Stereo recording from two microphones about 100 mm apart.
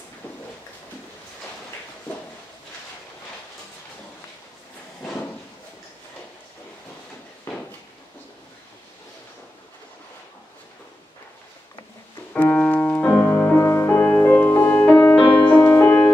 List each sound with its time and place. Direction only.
12.4 s music: 15° left (ahead or behind)